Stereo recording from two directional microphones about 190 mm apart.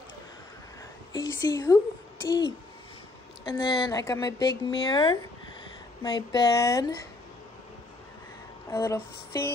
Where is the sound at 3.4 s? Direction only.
20° left (ahead or behind).